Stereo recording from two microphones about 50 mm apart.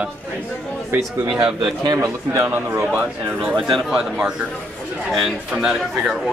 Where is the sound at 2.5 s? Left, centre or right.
Right.